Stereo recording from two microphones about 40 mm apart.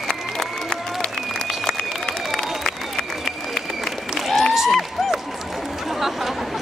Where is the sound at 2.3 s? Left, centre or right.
Centre.